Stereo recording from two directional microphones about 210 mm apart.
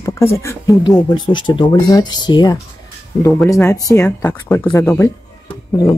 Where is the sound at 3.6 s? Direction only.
15° left (ahead or behind).